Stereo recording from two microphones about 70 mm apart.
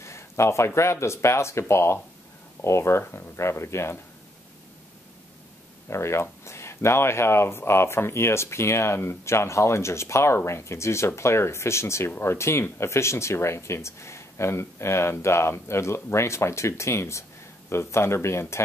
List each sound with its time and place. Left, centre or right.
0.0 s speech: left
5.9 s speech: left